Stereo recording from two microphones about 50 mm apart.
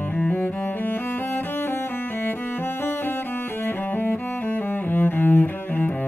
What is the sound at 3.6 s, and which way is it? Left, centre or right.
Cello, left.